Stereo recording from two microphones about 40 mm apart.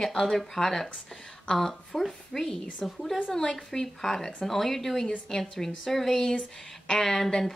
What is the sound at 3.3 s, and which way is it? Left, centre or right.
Speech, centre.